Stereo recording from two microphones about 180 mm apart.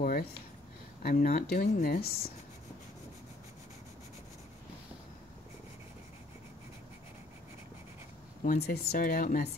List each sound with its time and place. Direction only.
0.0 s a sound: 55° left (ahead or behind)
1.0 s speech: 50° left (ahead or behind)
8.5 s speech: 60° left (ahead or behind)